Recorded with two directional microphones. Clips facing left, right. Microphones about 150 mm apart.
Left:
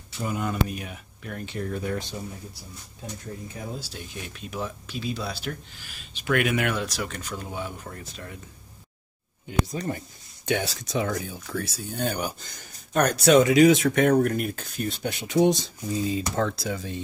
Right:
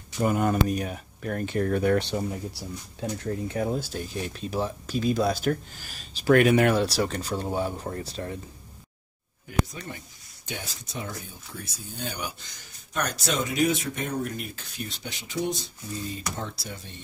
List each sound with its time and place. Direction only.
0.2 s speech: 50° right (ahead or behind); by 3.9 s 70° right (ahead or behind)
3.9 s speech: 40° right (ahead or behind)
9.5 s speech: 35° left (ahead or behind)
10.4 s speech: 75° left (ahead or behind)
12.0 s speech: 45° left (ahead or behind); by 17.0 s 90° left